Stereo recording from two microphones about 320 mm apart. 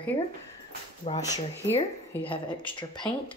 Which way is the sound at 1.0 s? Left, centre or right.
Centre.